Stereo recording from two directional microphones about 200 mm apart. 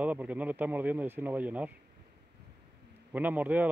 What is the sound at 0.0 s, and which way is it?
Speech, 10° right (ahead or behind).